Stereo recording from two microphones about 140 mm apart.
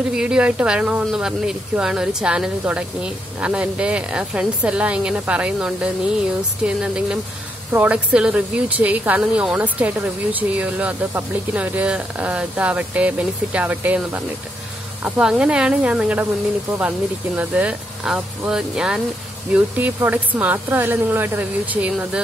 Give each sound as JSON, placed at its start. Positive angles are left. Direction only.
{"t": 0.1, "sound": "speech", "side_deg": -5}
{"t": 17.4, "sound": "speech", "side_deg": -10}